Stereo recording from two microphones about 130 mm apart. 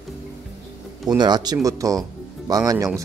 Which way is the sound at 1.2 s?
35° right (ahead or behind).